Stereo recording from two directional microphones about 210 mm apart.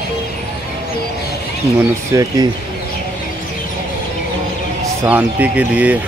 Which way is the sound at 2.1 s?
15° right (ahead or behind).